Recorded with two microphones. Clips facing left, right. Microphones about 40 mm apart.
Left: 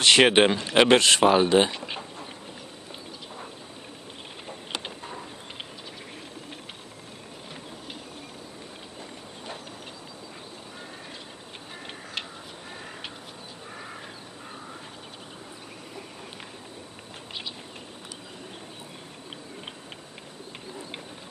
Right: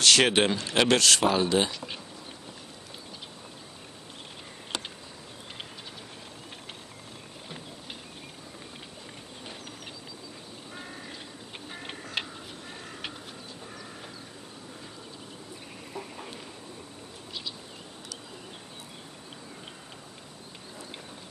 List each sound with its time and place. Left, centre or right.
0.0 s speech: left